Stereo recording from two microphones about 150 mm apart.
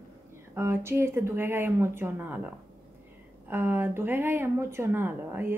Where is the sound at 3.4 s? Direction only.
15° right (ahead or behind).